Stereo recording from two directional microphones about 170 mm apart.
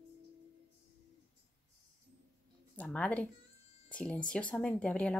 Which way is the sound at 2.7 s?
5° left (ahead or behind).